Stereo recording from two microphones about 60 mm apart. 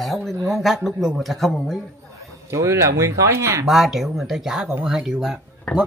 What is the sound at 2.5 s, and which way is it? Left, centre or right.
Speech, right.